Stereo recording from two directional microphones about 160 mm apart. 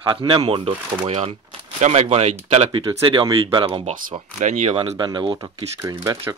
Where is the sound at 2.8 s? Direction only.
30° right (ahead or behind).